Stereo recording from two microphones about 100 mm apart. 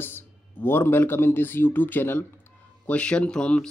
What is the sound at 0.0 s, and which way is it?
Speech, 20° left (ahead or behind).